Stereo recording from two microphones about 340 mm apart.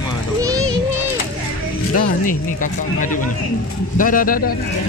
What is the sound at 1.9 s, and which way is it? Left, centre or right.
Speech, left.